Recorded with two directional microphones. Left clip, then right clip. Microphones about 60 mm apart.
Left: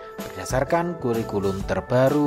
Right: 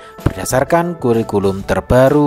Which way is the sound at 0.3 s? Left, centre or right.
Right.